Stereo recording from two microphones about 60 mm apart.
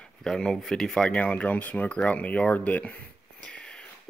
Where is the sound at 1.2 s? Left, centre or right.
Left.